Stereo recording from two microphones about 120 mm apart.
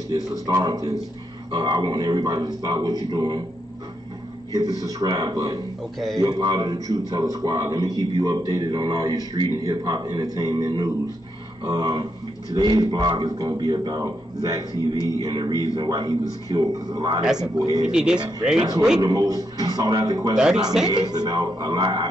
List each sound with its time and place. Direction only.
0.1 s a man's voice: 30° right (ahead or behind)
4.5 s a man's voice: 30° right (ahead or behind)
17.9 s speech: 5° right (ahead or behind)
18.9 s a man's voice: 30° right (ahead or behind)
20.3 s speech: 5° right (ahead or behind)
20.9 s a man's voice: 35° right (ahead or behind)